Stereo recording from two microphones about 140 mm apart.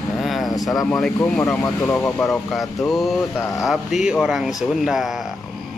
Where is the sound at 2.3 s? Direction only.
Centre (ahead or behind).